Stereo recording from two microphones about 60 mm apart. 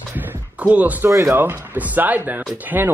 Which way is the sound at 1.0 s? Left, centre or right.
Right.